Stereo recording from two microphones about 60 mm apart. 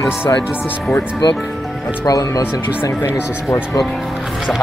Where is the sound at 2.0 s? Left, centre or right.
Left.